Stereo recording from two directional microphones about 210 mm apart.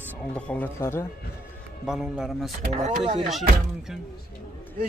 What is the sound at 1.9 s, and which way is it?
Speech, centre (ahead or behind).